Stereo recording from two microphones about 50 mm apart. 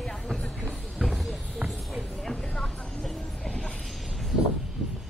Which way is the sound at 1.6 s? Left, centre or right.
Right.